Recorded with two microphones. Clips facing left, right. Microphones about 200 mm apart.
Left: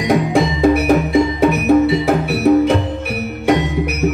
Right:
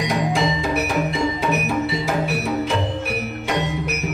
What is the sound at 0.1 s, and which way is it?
Music, 55° left (ahead or behind).